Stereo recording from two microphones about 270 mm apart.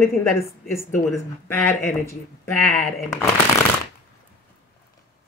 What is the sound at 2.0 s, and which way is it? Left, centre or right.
Speech, centre.